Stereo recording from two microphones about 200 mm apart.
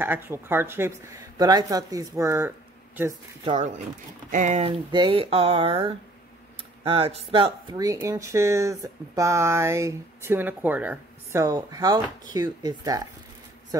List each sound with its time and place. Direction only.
0.0 s speech: 10° right (ahead or behind)
3.4 s speech: 35° right (ahead or behind); by 13.0 s 20° right (ahead or behind)